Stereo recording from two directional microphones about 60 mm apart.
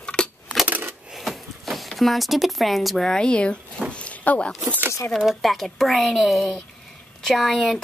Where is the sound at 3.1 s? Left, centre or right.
Centre.